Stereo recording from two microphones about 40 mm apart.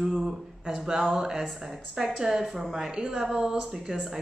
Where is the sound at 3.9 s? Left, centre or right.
Centre.